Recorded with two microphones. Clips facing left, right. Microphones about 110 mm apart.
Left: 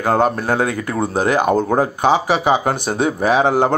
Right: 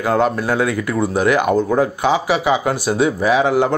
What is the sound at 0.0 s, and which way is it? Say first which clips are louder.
Speech: even; 40° left (ahead or behind).